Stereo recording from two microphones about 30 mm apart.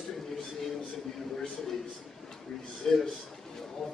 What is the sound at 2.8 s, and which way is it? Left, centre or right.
Speech, left.